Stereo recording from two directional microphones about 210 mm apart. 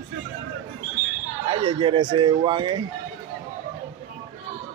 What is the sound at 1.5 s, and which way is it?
A man's voice, 25° right (ahead or behind).